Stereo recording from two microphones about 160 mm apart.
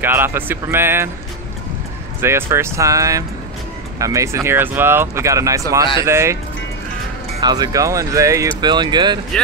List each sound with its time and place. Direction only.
0.0 s speech: 15° right (ahead or behind)
2.2 s speech: 15° right (ahead or behind)
7.3 s speech: 25° right (ahead or behind)